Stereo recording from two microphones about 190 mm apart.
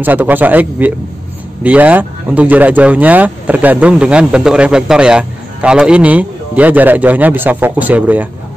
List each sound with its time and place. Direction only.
0.0 s speech: 10° right (ahead or behind)